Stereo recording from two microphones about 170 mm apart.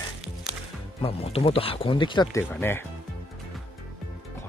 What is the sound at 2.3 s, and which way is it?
Speech, 10° left (ahead or behind).